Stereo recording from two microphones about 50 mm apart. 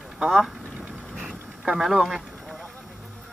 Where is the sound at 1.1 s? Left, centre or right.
Centre.